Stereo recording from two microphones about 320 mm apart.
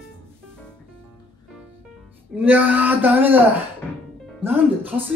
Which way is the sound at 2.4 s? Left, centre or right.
Centre.